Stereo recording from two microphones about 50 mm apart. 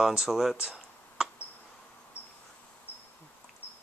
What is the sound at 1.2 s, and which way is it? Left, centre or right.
Insect, centre.